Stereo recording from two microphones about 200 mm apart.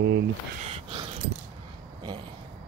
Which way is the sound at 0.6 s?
30° right (ahead or behind).